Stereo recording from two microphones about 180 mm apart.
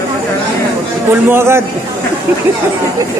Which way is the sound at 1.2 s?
15° right (ahead or behind).